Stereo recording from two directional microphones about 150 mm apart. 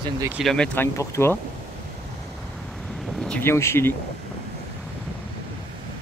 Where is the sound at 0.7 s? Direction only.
15° left (ahead or behind).